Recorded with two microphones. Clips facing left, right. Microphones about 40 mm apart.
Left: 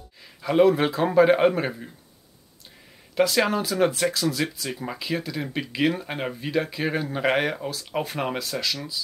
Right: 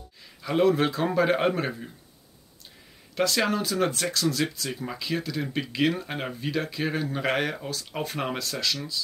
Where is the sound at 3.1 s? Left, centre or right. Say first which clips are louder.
Left 3 dB; centre.